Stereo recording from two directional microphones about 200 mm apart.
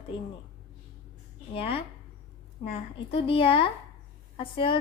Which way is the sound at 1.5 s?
25° left (ahead or behind).